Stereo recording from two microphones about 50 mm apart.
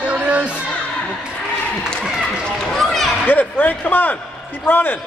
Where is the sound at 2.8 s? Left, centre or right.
Centre.